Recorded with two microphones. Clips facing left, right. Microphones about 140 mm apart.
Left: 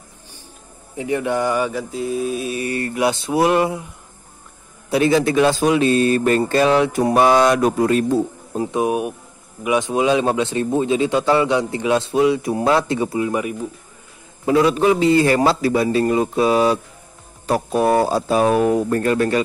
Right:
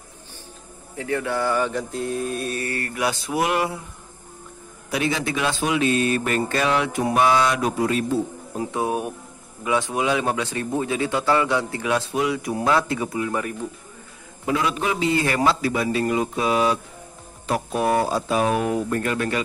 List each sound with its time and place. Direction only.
0.9 s speech: 15° left (ahead or behind)
1.7 s mantra: 5° left (ahead or behind)
2.6 s speech: 20° left (ahead or behind)
4.9 s speech: 40° left (ahead or behind)
8.7 s speech: 15° left (ahead or behind)
13.3 s speech: 10° left (ahead or behind)
14.4 s speech: 35° left (ahead or behind)